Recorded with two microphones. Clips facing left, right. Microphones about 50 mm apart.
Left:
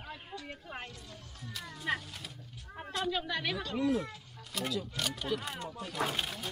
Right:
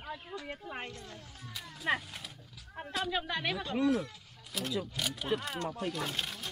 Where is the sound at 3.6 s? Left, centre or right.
Right.